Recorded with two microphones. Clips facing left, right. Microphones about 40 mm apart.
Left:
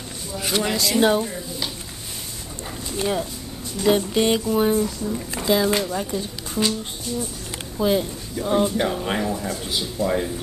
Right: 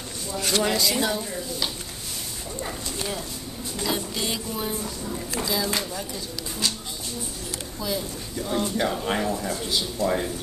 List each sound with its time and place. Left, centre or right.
0.3 s speech: centre
3.0 s speech: left
4.8 s speech: centre
5.3 s speech: left
7.8 s speech: left
8.5 s speech: centre
8.8 s speech: centre